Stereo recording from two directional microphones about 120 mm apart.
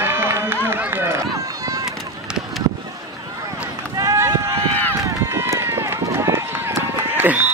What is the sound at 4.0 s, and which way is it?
Run, 25° right (ahead or behind).